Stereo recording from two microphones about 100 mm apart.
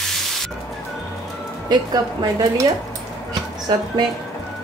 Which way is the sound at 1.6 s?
40° right (ahead or behind).